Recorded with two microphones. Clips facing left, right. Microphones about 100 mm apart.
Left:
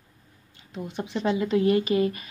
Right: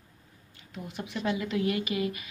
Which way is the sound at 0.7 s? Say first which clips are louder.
Left 6 dB; 30° left (ahead or behind).